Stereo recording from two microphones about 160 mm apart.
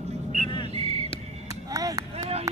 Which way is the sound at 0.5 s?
30° left (ahead or behind).